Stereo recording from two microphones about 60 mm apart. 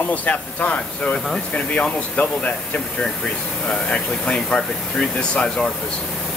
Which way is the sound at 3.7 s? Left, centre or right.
Centre.